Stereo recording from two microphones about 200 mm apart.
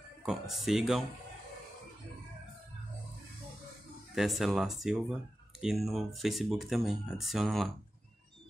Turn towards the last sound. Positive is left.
turn(degrees=0)  # may be behind; listen again after turning